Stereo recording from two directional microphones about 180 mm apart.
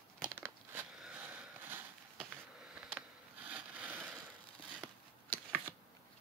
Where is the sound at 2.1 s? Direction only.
Centre (ahead or behind).